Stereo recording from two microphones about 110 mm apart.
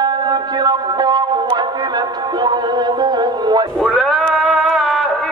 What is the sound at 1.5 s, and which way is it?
Music, 40° right (ahead or behind).